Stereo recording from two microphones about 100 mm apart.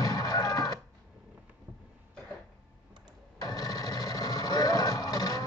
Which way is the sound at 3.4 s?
40° left (ahead or behind).